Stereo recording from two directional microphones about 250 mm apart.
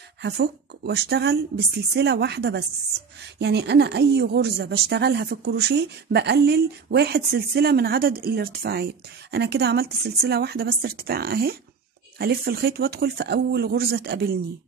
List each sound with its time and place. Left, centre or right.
0.2 s speech: right